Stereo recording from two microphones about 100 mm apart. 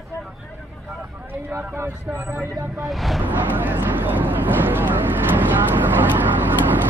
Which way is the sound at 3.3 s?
20° right (ahead or behind).